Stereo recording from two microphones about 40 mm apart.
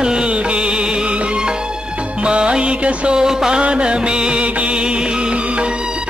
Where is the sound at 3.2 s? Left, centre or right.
Centre.